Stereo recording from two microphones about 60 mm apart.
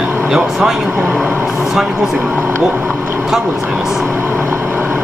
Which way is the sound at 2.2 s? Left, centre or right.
Right.